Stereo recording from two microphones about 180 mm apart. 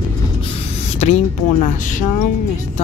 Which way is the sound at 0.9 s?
35° left (ahead or behind).